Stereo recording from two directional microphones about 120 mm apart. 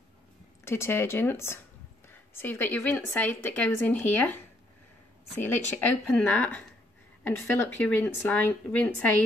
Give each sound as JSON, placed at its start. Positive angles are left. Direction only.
{"t": 0.7, "sound": "a woman's voice", "side_deg": 20}
{"t": 5.4, "sound": "a woman's voice", "side_deg": 15}